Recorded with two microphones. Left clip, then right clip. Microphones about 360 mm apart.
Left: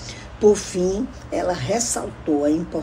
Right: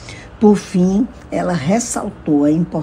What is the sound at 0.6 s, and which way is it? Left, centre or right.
Speech, centre.